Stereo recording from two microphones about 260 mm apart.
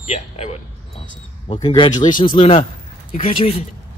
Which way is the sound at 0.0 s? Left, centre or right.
Left.